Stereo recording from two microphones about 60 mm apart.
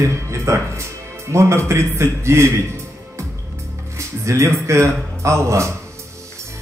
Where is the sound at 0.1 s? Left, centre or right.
Right.